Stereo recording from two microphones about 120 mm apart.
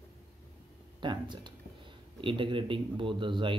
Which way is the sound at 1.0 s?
40° right (ahead or behind).